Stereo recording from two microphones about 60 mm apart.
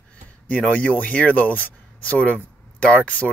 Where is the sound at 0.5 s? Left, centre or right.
Left.